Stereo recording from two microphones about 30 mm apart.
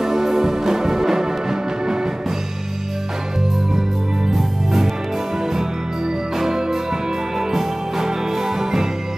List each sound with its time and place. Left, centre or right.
0.0 s music: centre
4.3 s music: centre